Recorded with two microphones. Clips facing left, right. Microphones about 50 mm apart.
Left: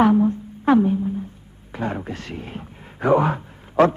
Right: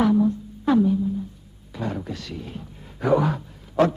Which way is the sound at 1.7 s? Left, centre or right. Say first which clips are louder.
Left 3 dB; left.